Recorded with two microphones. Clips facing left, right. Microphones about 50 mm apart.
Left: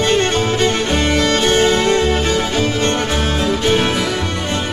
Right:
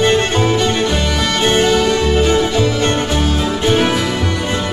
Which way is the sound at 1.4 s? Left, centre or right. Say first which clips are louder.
Right 4 dB; right.